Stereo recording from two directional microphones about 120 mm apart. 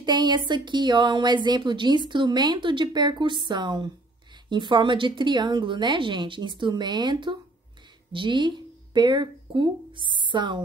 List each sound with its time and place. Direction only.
0.0 s a woman's voice: 40° right (ahead or behind)